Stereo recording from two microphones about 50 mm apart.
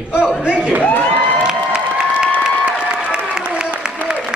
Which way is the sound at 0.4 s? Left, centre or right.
Centre.